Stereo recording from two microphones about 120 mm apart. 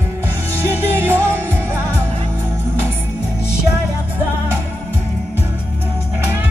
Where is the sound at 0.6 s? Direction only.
20° right (ahead or behind).